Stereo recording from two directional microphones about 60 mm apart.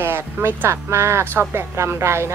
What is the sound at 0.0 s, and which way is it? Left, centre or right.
Speech, right.